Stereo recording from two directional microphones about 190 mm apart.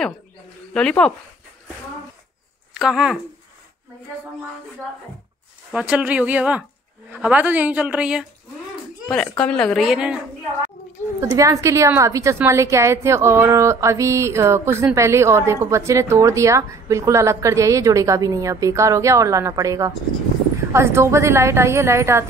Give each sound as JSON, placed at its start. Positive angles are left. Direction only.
{"t": 0.7, "sound": "a woman's voice", "side_deg": 5}
{"t": 2.7, "sound": "speech", "side_deg": -5}
{"t": 5.7, "sound": "a woman's voice", "side_deg": -5}
{"t": 11.1, "sound": "a woman's voice", "side_deg": -15}